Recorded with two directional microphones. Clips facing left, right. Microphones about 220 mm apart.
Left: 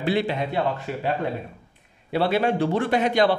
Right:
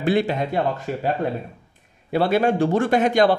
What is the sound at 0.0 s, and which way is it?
A man's voice, 45° right (ahead or behind).